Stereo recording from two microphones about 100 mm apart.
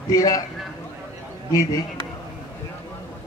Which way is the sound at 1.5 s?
35° left (ahead or behind).